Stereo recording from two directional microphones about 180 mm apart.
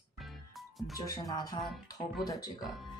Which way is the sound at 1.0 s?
20° left (ahead or behind).